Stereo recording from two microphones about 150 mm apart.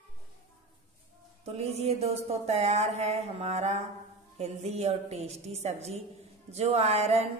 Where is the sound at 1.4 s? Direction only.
45° right (ahead or behind).